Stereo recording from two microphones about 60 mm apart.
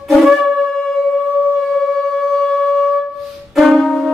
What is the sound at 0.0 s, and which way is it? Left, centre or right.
Shofar, centre.